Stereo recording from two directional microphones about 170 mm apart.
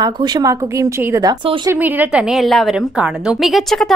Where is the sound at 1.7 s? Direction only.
10° right (ahead or behind).